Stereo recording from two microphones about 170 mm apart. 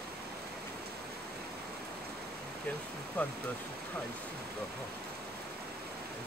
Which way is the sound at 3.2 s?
10° left (ahead or behind).